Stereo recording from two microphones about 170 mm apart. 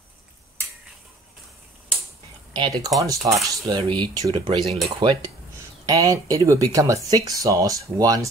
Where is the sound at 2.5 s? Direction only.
25° right (ahead or behind).